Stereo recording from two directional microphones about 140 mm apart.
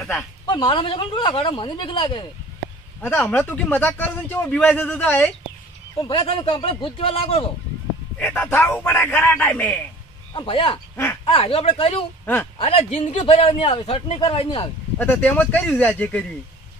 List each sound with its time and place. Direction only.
0.5 s a man's voice: 35° left (ahead or behind)
3.2 s a man's voice: 10° left (ahead or behind)
5.9 s a man's voice: 40° left (ahead or behind)
8.2 s a man's voice: 15° left (ahead or behind)
10.3 s a man's voice: 35° left (ahead or behind)
15.0 s a man's voice: 10° left (ahead or behind)